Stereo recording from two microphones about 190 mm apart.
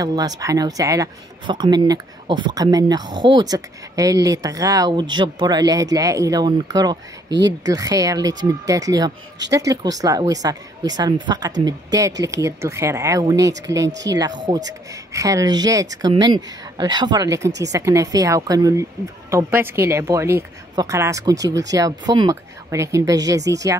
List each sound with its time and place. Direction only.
0.0 s speech: 20° right (ahead or behind)
7.2 s speech: 65° right (ahead or behind)
7.6 s a woman's voice: 20° right (ahead or behind)